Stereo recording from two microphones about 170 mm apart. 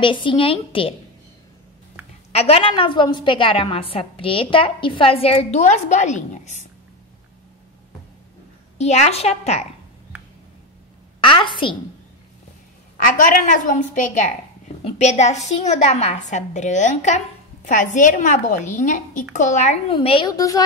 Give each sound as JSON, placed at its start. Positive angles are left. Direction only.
{"t": 0.0, "sound": "a woman's voice", "side_deg": 30}
{"t": 2.3, "sound": "a woman's voice", "side_deg": 35}
{"t": 8.7, "sound": "a woman's voice", "side_deg": 40}
{"t": 11.1, "sound": "a woman's voice", "side_deg": 30}
{"t": 13.0, "sound": "a woman's voice", "side_deg": 50}
{"t": 14.8, "sound": "a woman's voice", "side_deg": 35}
{"t": 19.9, "sound": "a woman's voice", "side_deg": 30}